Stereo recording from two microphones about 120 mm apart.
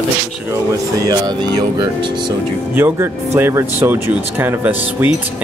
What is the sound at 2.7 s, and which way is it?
Speech, 20° right (ahead or behind).